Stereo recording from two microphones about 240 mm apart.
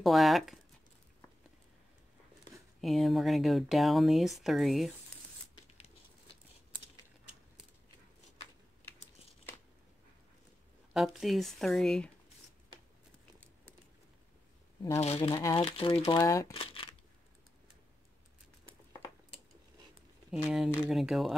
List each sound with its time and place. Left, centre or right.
0.0 s speech: centre
2.8 s speech: centre
10.9 s speech: centre
15.0 s speech: left
16.5 s crushing: left
20.2 s speech: centre